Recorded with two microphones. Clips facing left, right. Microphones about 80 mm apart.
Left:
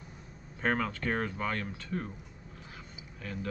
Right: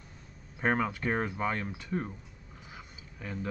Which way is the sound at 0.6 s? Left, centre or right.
Centre.